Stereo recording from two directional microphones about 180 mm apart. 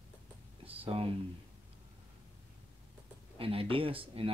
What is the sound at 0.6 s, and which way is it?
Speech, 30° right (ahead or behind).